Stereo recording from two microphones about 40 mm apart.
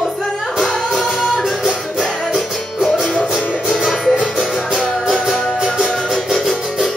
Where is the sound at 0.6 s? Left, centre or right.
Centre.